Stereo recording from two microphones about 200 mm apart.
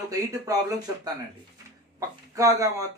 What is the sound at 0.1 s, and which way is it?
Speech, 15° right (ahead or behind).